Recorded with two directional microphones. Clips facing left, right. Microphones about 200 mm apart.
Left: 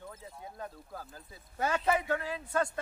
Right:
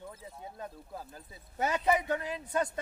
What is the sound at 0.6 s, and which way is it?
A man's voice, 20° right (ahead or behind).